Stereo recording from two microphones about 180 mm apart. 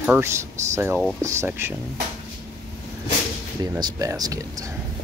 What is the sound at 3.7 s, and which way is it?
Speech, 20° right (ahead or behind).